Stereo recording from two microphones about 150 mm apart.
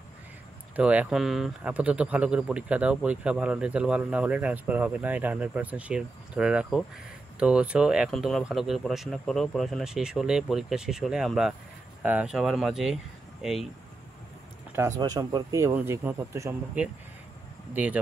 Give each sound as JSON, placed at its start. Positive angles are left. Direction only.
{"t": 0.7, "sound": "speech", "side_deg": -10}
{"t": 14.8, "sound": "speech", "side_deg": -20}